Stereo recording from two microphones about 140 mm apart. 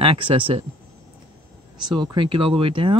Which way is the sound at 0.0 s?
40° right (ahead or behind).